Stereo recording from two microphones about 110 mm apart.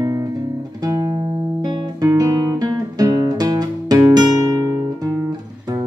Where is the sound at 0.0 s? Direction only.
30° right (ahead or behind).